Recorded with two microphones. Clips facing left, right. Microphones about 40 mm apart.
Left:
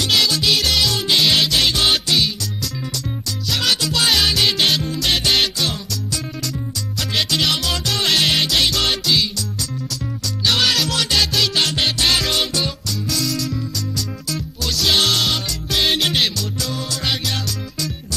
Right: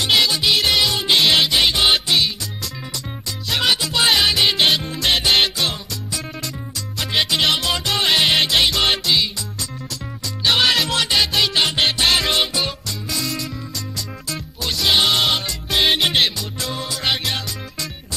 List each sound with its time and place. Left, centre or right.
0.0 s music: centre
3.4 s music: right
7.0 s music: centre
10.4 s music: centre